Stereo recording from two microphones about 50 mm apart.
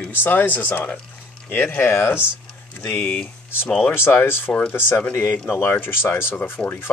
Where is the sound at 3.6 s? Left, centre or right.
Left.